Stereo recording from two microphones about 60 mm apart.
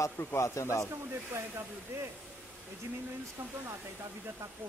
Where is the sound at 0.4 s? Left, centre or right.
Left.